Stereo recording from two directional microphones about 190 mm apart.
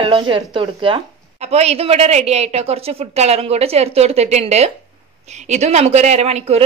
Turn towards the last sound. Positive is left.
turn(degrees=-35)  # may be behind; listen again after turning